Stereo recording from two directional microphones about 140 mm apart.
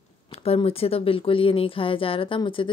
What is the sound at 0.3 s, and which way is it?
A woman's voice, 45° left (ahead or behind).